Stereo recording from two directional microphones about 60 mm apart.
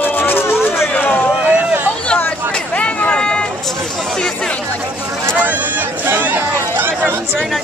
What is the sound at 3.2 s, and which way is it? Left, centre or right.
Vehicle, centre.